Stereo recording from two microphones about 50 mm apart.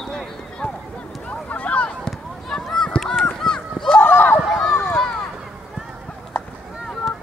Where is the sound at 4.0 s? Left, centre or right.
Left.